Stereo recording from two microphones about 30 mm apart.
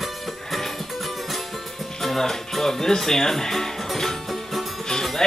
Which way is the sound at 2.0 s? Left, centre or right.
Centre.